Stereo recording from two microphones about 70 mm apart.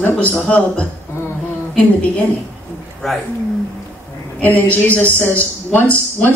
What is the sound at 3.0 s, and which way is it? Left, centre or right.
Speech, centre.